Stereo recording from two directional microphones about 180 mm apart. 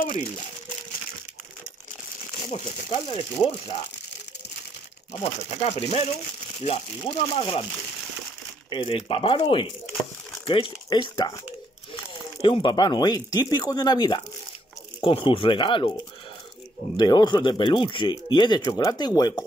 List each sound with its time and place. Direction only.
2.5 s speech: 35° left (ahead or behind)
5.1 s speech: 35° left (ahead or behind)
8.6 s speech: 30° left (ahead or behind)
16.9 s speech: 25° left (ahead or behind)